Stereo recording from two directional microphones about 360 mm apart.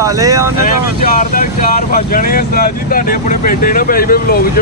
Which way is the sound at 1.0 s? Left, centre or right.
Left.